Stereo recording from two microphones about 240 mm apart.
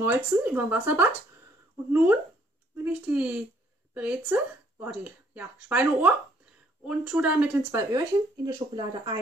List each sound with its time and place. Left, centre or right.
0.0 s speech: centre